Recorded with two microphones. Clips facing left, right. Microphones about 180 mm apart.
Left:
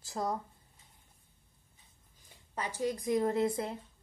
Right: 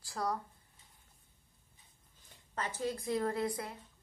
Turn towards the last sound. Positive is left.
turn(degrees=25)  # may be behind; listen again after turning